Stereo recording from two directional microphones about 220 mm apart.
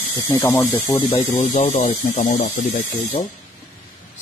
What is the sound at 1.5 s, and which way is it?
Speech, 35° left (ahead or behind).